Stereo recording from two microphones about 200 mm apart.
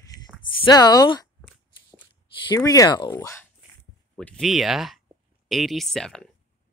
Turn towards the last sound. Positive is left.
turn(degrees=5)  # may be behind; listen again after turning